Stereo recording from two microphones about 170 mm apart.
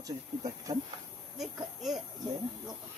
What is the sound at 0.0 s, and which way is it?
Speech, 20° right (ahead or behind).